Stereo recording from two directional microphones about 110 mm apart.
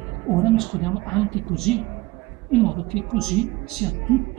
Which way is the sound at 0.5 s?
5° left (ahead or behind).